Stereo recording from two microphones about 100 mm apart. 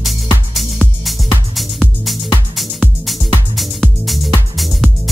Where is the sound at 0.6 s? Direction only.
Centre (ahead or behind).